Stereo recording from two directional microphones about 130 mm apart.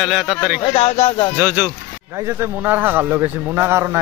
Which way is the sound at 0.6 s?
50° left (ahead or behind).